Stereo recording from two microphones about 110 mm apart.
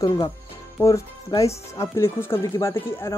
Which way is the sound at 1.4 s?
25° left (ahead or behind).